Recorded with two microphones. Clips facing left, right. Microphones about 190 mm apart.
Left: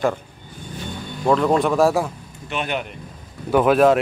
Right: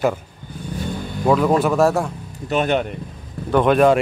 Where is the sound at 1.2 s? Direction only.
5° right (ahead or behind).